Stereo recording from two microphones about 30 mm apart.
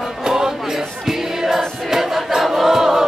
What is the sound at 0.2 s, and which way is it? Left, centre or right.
Music, centre.